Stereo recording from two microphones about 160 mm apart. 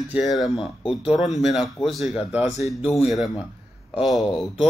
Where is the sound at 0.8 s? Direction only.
35° left (ahead or behind).